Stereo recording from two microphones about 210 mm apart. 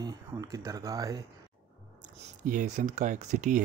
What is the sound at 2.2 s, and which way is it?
A man's voice, 35° right (ahead or behind).